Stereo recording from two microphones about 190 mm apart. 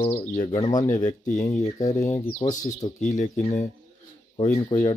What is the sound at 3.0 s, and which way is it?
Speech, 40° left (ahead or behind).